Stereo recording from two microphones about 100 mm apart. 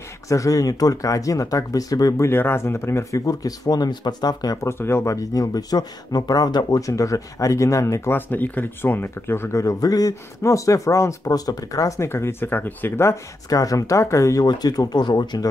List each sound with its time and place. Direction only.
0.3 s speech: 35° left (ahead or behind)
4.6 s speech: 25° left (ahead or behind)
12.1 s speech: 25° left (ahead or behind)
14.4 s speech: 40° left (ahead or behind)